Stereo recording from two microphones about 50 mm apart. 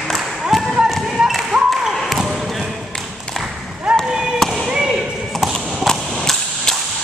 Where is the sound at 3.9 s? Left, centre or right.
Centre.